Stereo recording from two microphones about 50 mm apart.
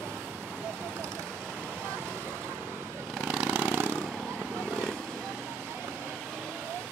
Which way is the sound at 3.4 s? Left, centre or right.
Right.